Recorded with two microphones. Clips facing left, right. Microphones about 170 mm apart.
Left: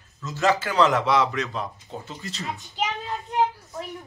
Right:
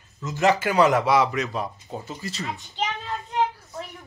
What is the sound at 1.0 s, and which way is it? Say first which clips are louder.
A man's voice: right 2 dB; 5° right (ahead or behind).